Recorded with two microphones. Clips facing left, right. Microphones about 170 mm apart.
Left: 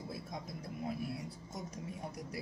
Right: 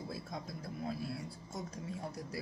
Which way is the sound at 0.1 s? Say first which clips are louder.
Right 1 dB; 20° left (ahead or behind).